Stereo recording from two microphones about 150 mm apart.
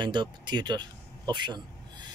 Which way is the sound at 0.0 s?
30° right (ahead or behind).